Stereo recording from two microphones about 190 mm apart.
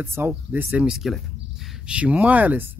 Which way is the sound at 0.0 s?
10° right (ahead or behind).